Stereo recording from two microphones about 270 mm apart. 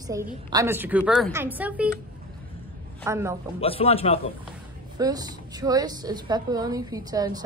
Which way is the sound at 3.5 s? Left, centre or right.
Left.